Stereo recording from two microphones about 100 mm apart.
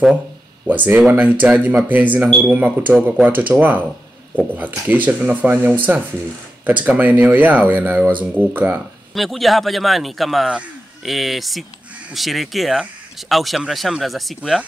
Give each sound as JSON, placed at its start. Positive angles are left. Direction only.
{"t": 0.7, "sound": "speech", "side_deg": -15}
{"t": 9.1, "sound": "a man's voice", "side_deg": 0}